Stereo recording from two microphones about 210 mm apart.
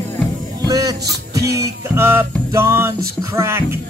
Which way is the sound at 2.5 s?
10° right (ahead or behind).